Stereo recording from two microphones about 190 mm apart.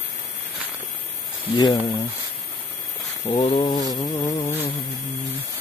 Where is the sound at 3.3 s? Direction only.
30° left (ahead or behind).